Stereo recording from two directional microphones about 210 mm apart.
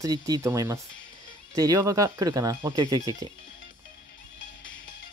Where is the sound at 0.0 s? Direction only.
15° right (ahead or behind).